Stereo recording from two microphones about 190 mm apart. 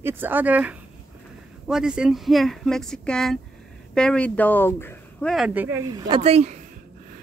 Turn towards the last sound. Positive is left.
turn(degrees=-35)  # may be behind; listen again after turning